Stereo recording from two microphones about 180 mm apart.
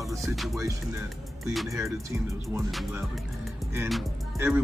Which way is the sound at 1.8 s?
15° right (ahead or behind).